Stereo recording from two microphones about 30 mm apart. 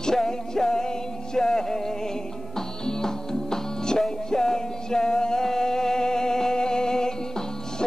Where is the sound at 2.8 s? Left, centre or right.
Centre.